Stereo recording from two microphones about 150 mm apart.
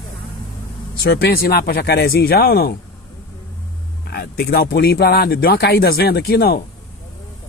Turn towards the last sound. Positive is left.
turn(degrees=90)